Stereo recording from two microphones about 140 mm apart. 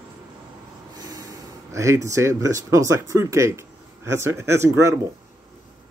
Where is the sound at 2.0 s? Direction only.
20° right (ahead or behind).